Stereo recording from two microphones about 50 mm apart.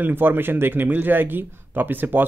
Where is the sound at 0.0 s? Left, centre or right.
Right.